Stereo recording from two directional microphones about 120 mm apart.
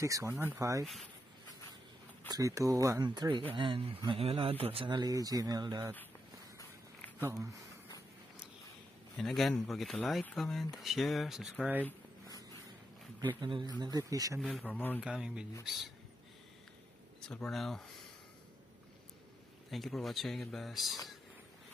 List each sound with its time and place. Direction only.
0.0 s speech: 25° right (ahead or behind)
0.3 s speech: 15° right (ahead or behind)
0.6 s speech: 25° right (ahead or behind)
2.2 s speech: 30° right (ahead or behind)
7.2 s speech: 25° right (ahead or behind)
9.1 s speech: centre (ahead or behind)
13.4 s speech: 40° right (ahead or behind)
14.4 s speech: 10° left (ahead or behind)
15.0 s speech: 5° right (ahead or behind)
17.3 s speech: 5° left (ahead or behind)
19.7 s speech: centre (ahead or behind)